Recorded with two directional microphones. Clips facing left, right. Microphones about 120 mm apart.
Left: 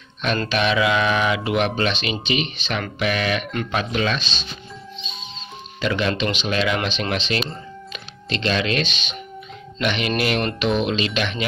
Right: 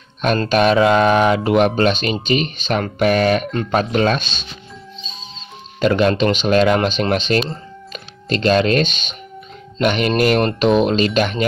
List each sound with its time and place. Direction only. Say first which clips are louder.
0.2 s speech: right 6 dB; 45° right (ahead or behind)
5.8 s speech: right 7 dB; 45° right (ahead or behind)